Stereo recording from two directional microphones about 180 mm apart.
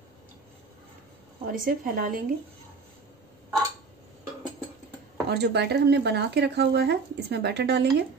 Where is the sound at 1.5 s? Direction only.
50° right (ahead or behind).